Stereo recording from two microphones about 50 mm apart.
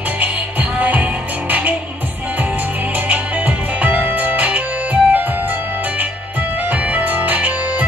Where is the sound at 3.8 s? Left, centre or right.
Right.